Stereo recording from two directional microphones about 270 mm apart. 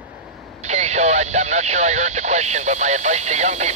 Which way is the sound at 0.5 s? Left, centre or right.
Right.